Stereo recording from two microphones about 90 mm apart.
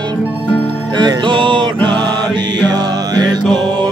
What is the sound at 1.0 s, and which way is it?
Music, 55° right (ahead or behind).